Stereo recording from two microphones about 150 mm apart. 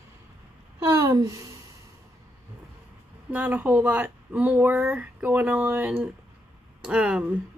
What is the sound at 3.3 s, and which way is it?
Speech, 10° right (ahead or behind).